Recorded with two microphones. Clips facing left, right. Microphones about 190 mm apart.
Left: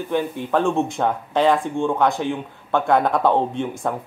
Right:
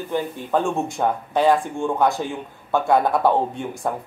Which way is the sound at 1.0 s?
15° right (ahead or behind).